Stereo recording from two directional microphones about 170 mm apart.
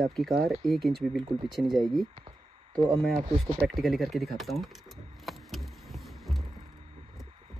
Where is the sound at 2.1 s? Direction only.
30° right (ahead or behind).